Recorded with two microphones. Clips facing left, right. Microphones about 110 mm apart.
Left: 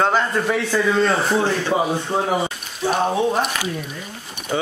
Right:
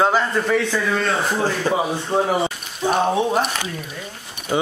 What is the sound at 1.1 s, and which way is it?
A man's voice, centre (ahead or behind).